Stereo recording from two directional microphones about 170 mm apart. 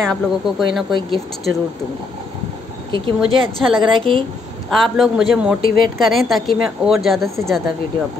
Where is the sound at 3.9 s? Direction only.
30° right (ahead or behind).